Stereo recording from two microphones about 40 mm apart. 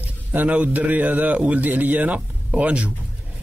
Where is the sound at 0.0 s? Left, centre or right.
Right.